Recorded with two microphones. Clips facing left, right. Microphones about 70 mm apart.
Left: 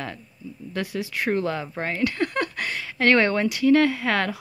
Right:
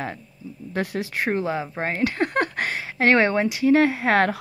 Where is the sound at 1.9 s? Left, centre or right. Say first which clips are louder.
Right 1 dB; right.